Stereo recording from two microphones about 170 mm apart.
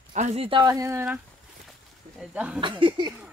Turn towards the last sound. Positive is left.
turn(degrees=-30)  # may be behind; listen again after turning